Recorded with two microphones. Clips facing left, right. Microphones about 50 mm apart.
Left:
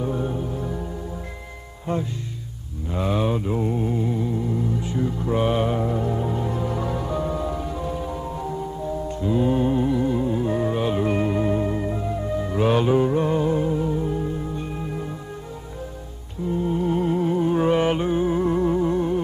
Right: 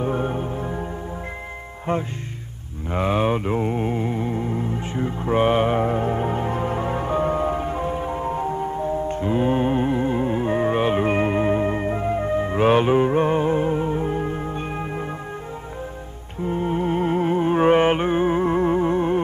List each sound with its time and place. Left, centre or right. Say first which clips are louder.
0.0 s music: right 2 dB; right
1.9 s music: right 2 dB; right
16.4 s music: even; right